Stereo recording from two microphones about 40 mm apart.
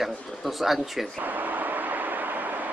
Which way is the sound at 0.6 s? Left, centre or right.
Centre.